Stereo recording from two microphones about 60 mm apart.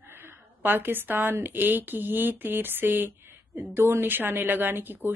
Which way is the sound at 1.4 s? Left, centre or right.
Right.